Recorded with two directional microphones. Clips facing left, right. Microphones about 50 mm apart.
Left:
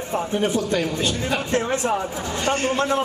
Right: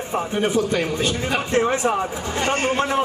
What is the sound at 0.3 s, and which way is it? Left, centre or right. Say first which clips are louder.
A man's voice: right 2 dB; right.